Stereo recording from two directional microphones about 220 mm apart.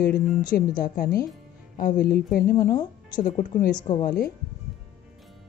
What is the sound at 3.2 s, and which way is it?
Speech, 35° left (ahead or behind).